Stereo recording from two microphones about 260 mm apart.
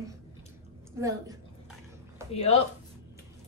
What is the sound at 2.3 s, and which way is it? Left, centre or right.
Speech, left.